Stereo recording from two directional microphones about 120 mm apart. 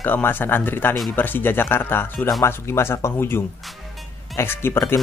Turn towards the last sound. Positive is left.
turn(degrees=20)  # may be behind; listen again after turning